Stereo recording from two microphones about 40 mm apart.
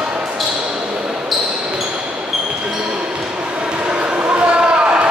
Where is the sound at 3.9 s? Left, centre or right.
Right.